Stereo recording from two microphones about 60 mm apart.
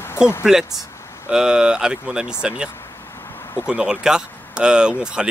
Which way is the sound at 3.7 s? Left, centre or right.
Centre.